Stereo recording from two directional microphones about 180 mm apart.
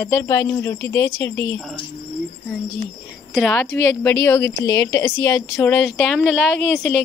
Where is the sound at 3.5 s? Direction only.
10° left (ahead or behind).